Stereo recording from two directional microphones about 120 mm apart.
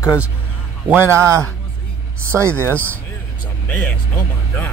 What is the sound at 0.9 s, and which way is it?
Speech, 20° right (ahead or behind).